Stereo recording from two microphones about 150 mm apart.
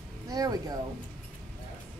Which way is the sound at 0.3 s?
25° right (ahead or behind).